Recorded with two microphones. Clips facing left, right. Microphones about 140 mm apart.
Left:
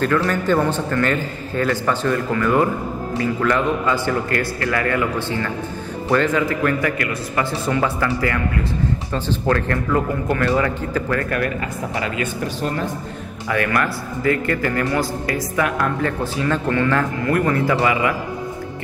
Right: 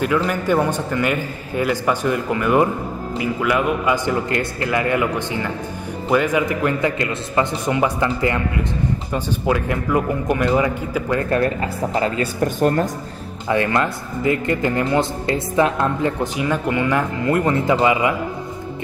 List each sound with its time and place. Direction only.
0.0 s a man's voice: 10° right (ahead or behind)
11.2 s a man's voice: 30° right (ahead or behind)
12.5 s speech: 45° right (ahead or behind)
13.5 s a man's voice: 25° right (ahead or behind)